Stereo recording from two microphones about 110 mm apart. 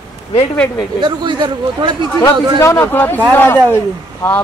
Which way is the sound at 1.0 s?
45° right (ahead or behind).